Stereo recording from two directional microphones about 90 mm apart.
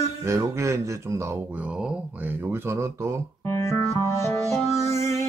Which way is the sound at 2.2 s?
25° right (ahead or behind).